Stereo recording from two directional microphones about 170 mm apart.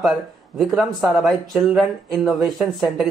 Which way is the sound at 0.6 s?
Centre (ahead or behind).